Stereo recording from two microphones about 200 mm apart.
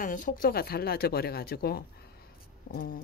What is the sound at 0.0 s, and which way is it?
Speech, 40° left (ahead or behind).